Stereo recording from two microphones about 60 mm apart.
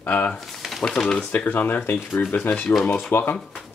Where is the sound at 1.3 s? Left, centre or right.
Left.